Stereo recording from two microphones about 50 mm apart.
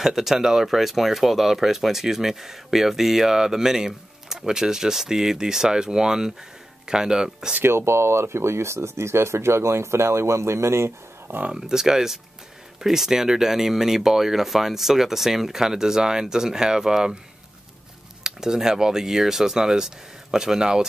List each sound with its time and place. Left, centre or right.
0.0 s speech: centre
7.6 s speech: right
11.5 s speech: centre
18.2 s speech: centre